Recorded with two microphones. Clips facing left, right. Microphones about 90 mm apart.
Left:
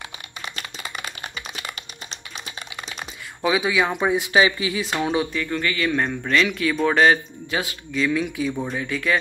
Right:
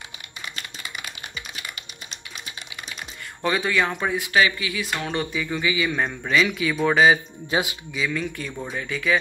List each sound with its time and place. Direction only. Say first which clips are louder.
0.8 s typing: left 5 dB; 35° left (ahead or behind)
3.4 s speech: left 2 dB; 5° left (ahead or behind)
3.9 s speech: left 3 dB; 20° left (ahead or behind)
5.1 s a man's voice: left 3 dB; centre (ahead or behind)
7.5 s speech: right 2 dB; 25° right (ahead or behind)
7.9 s a man's voice: left 6 dB; centre (ahead or behind)